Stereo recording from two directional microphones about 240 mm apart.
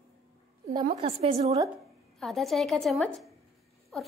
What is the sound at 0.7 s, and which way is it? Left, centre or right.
A woman's voice, right.